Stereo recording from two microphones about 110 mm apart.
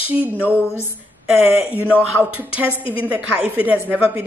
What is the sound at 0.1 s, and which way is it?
Speech, 15° right (ahead or behind).